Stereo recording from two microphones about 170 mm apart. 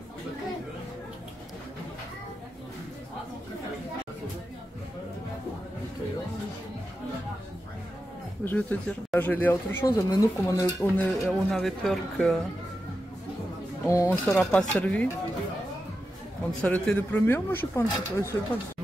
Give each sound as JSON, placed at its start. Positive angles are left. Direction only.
{"t": 8.5, "sound": "speech", "side_deg": 10}
{"t": 13.8, "sound": "speech", "side_deg": 15}
{"t": 14.2, "sound": "speech", "side_deg": 5}
{"t": 16.6, "sound": "speech", "side_deg": 10}